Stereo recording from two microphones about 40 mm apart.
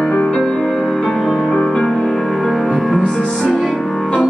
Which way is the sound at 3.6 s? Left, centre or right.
Centre.